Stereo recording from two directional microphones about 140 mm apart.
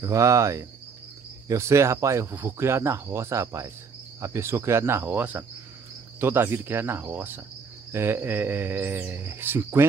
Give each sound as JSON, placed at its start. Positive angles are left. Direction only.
{"t": 0.0, "sound": "speech", "side_deg": -20}